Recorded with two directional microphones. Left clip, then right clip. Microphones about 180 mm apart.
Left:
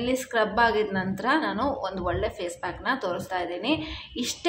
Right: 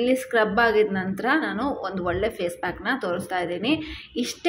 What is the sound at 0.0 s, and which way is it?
A woman's voice, 10° right (ahead or behind).